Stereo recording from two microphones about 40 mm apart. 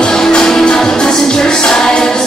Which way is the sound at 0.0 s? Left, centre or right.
Centre.